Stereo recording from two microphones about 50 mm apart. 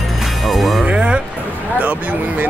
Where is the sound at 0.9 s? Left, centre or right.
Right.